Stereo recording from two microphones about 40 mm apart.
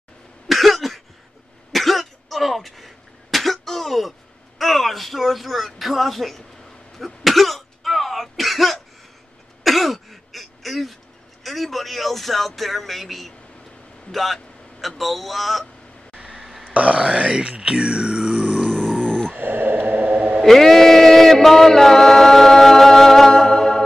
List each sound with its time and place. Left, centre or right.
0.5 s cough: centre
4.6 s speech: centre
7.2 s throat clearing: centre
11.4 s a man's voice: centre
16.3 s burping: centre
16.7 s speech: right
18.8 s grunt: centre
19.3 s a sound: right
20.4 s chant: centre